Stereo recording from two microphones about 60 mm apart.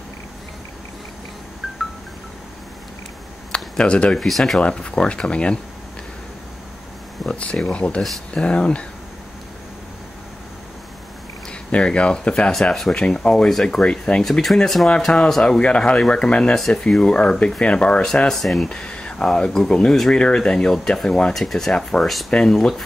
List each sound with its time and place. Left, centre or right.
3.5 s speech: centre
4.2 s speech: centre
4.6 s speech: centre
7.2 s a sound: centre
7.6 s speech: left
11.7 s speech: centre
14.2 s speech: centre
18.3 s speech: centre
18.7 s speech: centre